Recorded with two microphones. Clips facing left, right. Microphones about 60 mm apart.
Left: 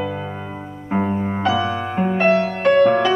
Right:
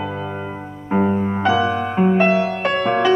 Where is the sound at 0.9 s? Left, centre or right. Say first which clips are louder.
Right 3 dB; centre.